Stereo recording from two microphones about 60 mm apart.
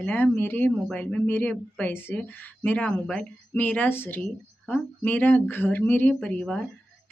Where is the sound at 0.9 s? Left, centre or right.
Centre.